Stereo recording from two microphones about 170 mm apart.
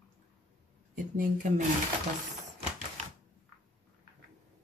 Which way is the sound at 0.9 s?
50° right (ahead or behind).